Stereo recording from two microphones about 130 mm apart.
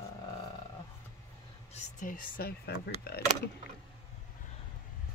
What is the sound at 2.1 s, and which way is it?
Speech, 90° left.